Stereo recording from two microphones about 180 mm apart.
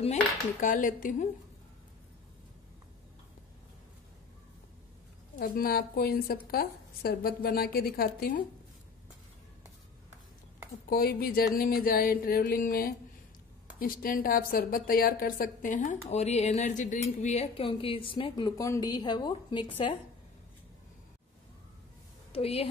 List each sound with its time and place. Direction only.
0.0 s speech: 45° left (ahead or behind)
5.4 s a woman's voice: 55° left (ahead or behind)
10.9 s a woman's voice: 55° left (ahead or behind); by 20.0 s 25° left (ahead or behind)
22.3 s a woman's voice: 35° left (ahead or behind)